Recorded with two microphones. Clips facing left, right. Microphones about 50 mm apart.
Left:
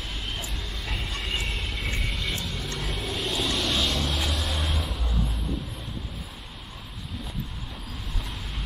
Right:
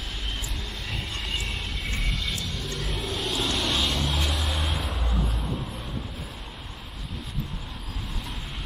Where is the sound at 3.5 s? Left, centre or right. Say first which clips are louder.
Even; centre.